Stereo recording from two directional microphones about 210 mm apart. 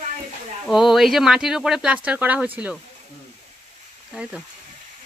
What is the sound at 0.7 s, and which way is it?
Speech, centre (ahead or behind).